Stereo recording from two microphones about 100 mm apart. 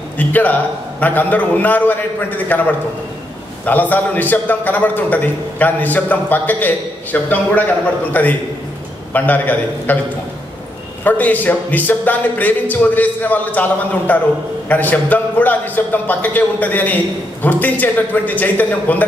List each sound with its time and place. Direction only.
0.2 s a man's voice: 15° left (ahead or behind)
11.1 s a man's voice: 15° left (ahead or behind)